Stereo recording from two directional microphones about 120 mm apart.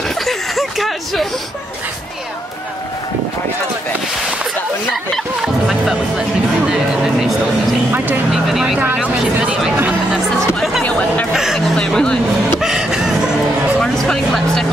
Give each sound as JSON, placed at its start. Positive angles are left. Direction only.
{"t": 0.2, "sound": "a sound", "side_deg": 0}
{"t": 5.1, "sound": "music", "side_deg": 0}
{"t": 7.9, "sound": "vehicle", "side_deg": -15}
{"t": 8.3, "sound": "vehicle", "side_deg": -5}
{"t": 8.8, "sound": "music", "side_deg": -10}
{"t": 10.8, "sound": "music", "side_deg": 10}
{"t": 11.3, "sound": "a sound", "side_deg": 0}
{"t": 12.6, "sound": "music", "side_deg": -5}